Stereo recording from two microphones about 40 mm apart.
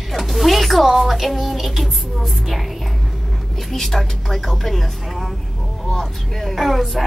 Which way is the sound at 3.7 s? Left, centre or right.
Centre.